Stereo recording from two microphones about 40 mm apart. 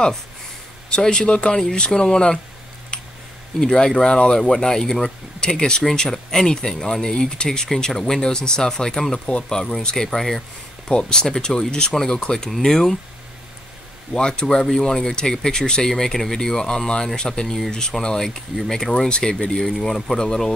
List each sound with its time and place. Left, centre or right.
0.8 s a man's voice: centre
3.5 s speech: centre
5.4 s a man's voice: left
6.0 s speech: centre
10.9 s speech: left
14.1 s a man's voice: centre
19.5 s speech: centre